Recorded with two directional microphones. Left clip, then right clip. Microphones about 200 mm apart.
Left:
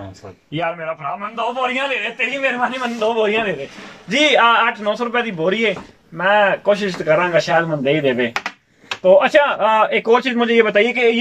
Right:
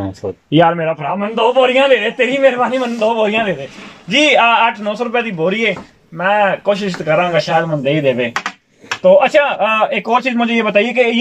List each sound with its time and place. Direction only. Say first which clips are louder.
0.5 s a man's voice: right 10 dB; 50° right (ahead or behind)
3.0 s a man's voice: right 2 dB; 20° right (ahead or behind)